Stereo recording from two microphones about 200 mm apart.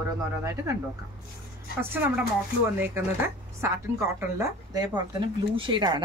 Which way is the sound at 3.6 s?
15° right (ahead or behind).